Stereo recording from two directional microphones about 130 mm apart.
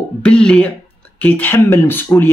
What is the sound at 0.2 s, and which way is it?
Speech, 5° left (ahead or behind).